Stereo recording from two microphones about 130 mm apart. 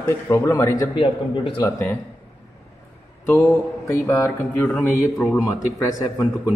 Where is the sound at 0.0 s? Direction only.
25° left (ahead or behind).